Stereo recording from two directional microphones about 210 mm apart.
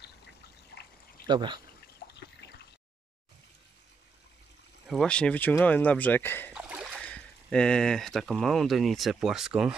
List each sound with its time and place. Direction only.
1.2 s speech: 20° right (ahead or behind)
2.0 s water: 45° left (ahead or behind)
4.8 s speech: 5° left (ahead or behind)
6.5 s a sound: 5° right (ahead or behind)
7.1 s speech: 5° left (ahead or behind)